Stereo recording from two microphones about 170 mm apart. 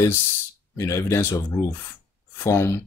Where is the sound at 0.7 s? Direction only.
15° left (ahead or behind).